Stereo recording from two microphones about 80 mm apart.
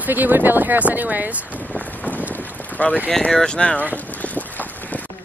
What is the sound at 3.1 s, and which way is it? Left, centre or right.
Speech, centre.